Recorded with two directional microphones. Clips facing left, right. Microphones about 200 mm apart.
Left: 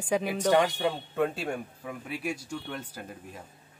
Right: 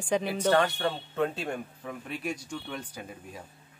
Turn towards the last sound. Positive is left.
turn(degrees=5)  # may be behind; listen again after turning